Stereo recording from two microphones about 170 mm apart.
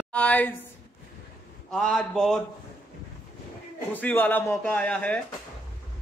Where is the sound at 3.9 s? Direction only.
10° left (ahead or behind).